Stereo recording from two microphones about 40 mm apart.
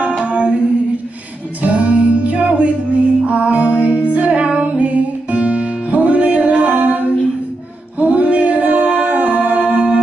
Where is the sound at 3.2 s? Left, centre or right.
Right.